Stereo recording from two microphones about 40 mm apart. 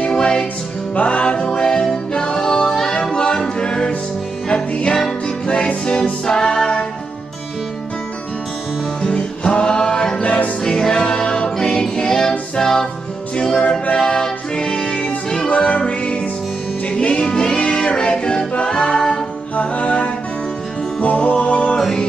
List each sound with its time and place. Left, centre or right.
0.0 s music: left
0.9 s music: left
5.5 s music: left
9.0 s music: left
13.4 s music: left
19.5 s music: left